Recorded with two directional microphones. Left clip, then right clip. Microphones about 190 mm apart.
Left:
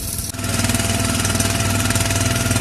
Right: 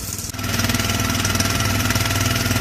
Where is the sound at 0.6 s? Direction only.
30° left (ahead or behind).